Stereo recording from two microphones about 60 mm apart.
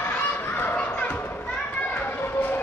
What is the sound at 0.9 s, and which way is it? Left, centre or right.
Children playing, left.